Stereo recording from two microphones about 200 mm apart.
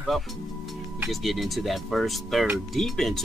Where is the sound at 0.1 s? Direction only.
Centre (ahead or behind).